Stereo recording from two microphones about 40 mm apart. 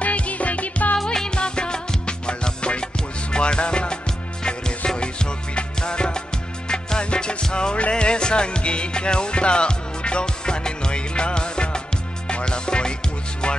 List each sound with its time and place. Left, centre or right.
0.0 s music: left
1.1 s music: left